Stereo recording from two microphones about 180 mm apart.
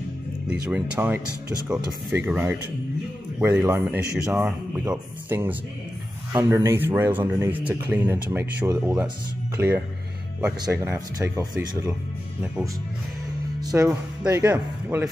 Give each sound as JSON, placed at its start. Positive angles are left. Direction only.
{"t": 0.7, "sound": "a man's voice", "side_deg": -10}
{"t": 13.6, "sound": "a man's voice", "side_deg": -20}